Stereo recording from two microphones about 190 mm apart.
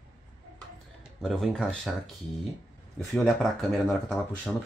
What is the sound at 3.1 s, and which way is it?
Speech, 5° left (ahead or behind).